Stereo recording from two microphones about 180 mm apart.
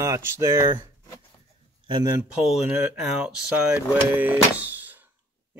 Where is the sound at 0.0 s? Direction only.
15° right (ahead or behind).